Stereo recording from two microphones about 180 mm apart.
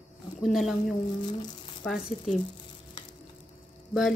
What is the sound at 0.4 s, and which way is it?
Speech, centre (ahead or behind).